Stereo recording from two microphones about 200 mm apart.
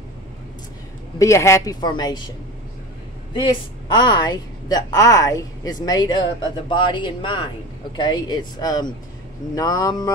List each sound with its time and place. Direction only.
1.1 s a woman's voice: 15° left (ahead or behind)
3.3 s a woman's voice: 25° left (ahead or behind)